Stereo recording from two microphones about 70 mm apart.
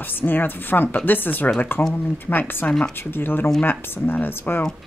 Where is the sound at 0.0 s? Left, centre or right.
Left.